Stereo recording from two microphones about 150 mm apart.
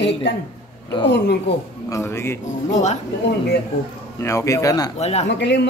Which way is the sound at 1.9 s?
20° left (ahead or behind).